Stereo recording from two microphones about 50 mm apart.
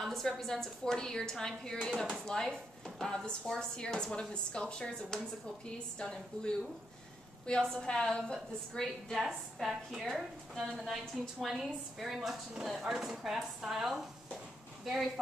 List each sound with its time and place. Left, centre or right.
0.0 s speech: centre
9.2 s a woman's voice: centre